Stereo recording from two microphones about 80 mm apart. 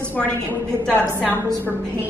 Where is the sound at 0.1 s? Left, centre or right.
Centre.